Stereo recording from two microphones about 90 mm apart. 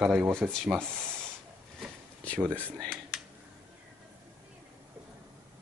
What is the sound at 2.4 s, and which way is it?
Speech, 20° right (ahead or behind).